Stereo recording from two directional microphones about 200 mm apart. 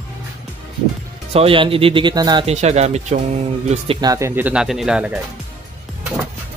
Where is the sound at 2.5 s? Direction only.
35° right (ahead or behind).